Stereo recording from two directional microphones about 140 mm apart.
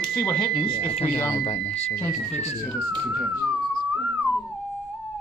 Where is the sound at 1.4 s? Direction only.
50° left (ahead or behind).